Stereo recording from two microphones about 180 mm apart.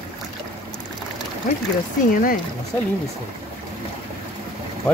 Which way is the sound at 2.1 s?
50° left (ahead or behind).